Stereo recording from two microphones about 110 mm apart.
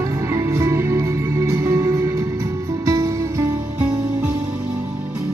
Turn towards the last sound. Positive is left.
turn(degrees=-30)  # may be behind; listen again after turning